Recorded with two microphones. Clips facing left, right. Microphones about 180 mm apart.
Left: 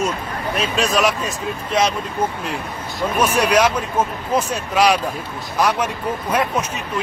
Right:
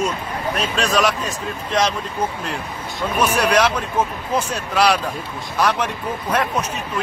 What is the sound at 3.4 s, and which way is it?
Speech, 10° left (ahead or behind).